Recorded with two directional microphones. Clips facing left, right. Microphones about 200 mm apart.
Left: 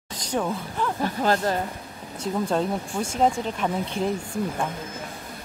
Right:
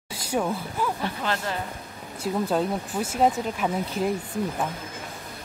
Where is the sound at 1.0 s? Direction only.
40° left (ahead or behind).